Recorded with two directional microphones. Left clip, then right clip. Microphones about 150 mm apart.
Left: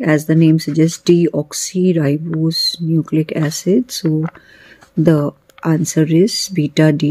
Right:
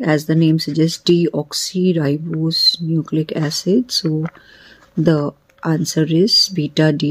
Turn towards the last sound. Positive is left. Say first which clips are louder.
# left 2 dB
turn(degrees=15)  # may be behind; listen again after turning